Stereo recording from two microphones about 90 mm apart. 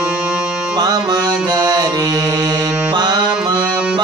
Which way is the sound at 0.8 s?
50° right (ahead or behind).